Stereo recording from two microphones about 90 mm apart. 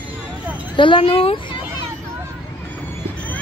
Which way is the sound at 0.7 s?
70° left (ahead or behind).